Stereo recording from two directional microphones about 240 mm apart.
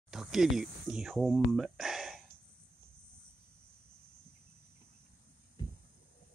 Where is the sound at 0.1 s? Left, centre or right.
Centre.